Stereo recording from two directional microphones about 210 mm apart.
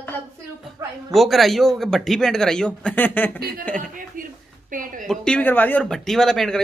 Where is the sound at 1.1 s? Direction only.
Centre (ahead or behind).